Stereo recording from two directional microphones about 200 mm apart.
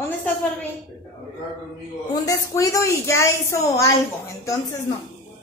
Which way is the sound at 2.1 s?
15° left (ahead or behind).